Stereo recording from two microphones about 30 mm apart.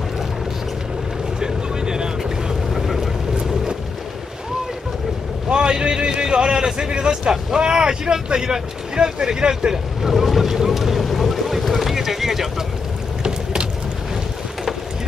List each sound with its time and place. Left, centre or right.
1.4 s vehicle: right
2.7 s vehicle: centre
5.5 s a sound: right
8.4 s speech: right
10.0 s speech: centre
10.7 s boat: centre
11.9 s a sound: centre
13.2 s vehicle: right